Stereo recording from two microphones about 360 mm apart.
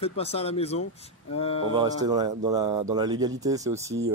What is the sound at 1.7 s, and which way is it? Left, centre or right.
Speech, centre.